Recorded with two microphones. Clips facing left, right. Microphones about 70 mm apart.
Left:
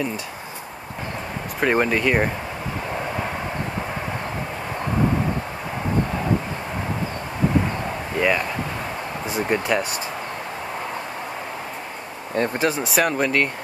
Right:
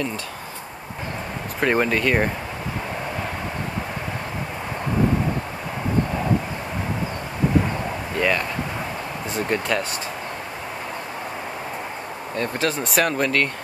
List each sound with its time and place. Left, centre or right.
1.6 s speech: centre
8.2 s speech: centre
12.4 s speech: left
12.7 s speech: centre